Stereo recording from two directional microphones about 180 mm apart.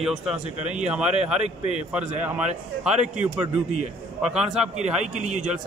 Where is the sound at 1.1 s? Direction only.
35° right (ahead or behind).